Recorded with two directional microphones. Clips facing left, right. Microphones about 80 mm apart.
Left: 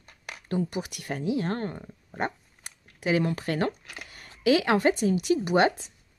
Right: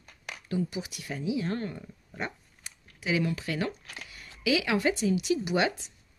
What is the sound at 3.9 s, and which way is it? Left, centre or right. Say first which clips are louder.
Speech: left 1 dB; left.